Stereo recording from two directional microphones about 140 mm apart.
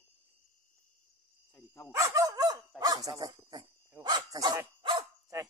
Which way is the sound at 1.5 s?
15° left (ahead or behind).